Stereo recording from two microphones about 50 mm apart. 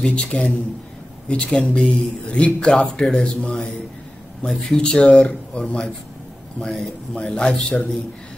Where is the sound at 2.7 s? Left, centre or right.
Centre.